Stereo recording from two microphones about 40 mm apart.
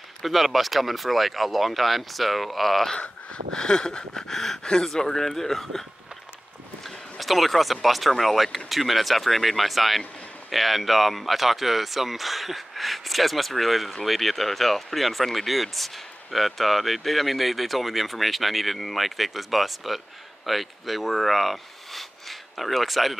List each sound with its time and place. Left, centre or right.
0.2 s speech: centre
3.5 s speech: centre